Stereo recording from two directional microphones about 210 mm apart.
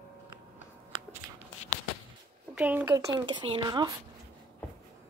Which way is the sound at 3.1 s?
20° right (ahead or behind).